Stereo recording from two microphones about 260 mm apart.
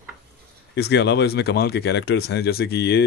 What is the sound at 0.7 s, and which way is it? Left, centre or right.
Speech, left.